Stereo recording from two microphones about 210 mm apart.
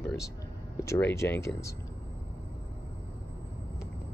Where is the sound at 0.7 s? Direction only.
15° left (ahead or behind).